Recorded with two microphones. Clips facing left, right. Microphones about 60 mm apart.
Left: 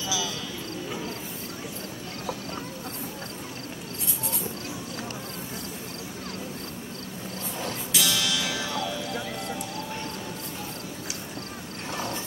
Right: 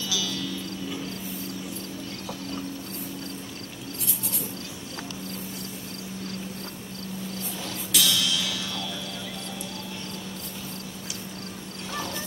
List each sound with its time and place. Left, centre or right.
0.1 s music: left
7.9 s music: left
11.9 s vehicle: left